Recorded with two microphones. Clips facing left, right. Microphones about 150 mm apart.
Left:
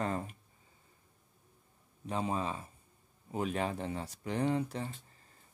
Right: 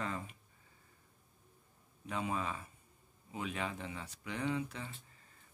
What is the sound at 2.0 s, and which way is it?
Speech, 35° left (ahead or behind).